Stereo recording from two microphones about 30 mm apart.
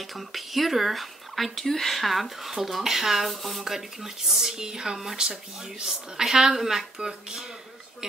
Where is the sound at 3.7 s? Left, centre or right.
Centre.